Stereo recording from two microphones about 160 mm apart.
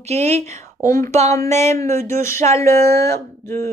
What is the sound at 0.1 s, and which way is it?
Speech, 40° right (ahead or behind).